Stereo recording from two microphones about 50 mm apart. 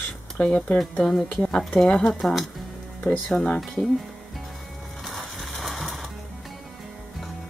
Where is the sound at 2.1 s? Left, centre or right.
Centre.